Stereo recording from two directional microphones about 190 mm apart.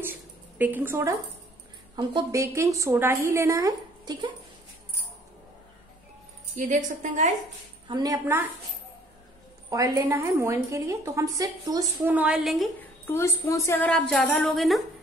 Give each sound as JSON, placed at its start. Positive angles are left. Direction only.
{"t": 0.0, "sound": "a sound", "side_deg": -10}
{"t": 2.0, "sound": "a woman's voice", "side_deg": -20}
{"t": 6.6, "sound": "a woman's voice", "side_deg": -40}
{"t": 7.9, "sound": "a woman's voice", "side_deg": -20}
{"t": 9.7, "sound": "a woman's voice", "side_deg": -15}
{"t": 13.0, "sound": "a woman's voice", "side_deg": 15}